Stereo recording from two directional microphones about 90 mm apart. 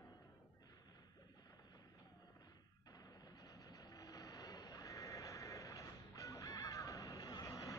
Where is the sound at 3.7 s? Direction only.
45° left (ahead or behind).